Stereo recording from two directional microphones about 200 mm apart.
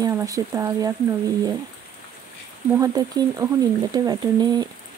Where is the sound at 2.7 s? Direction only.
20° right (ahead or behind).